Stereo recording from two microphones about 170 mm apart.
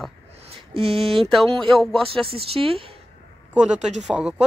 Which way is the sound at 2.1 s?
35° right (ahead or behind).